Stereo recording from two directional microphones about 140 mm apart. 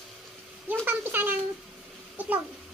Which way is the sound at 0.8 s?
15° right (ahead or behind).